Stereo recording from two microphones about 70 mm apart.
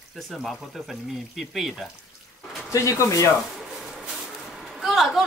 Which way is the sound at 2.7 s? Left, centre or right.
Left.